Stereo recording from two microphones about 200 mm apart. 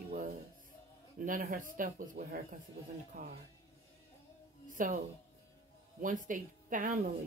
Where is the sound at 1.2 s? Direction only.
45° right (ahead or behind).